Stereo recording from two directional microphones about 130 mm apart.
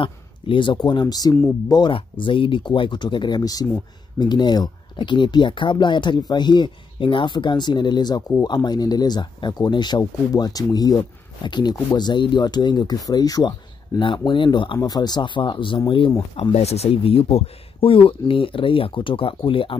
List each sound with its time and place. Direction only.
0.0 s speech: 40° left (ahead or behind)
16.5 s speech: 55° left (ahead or behind)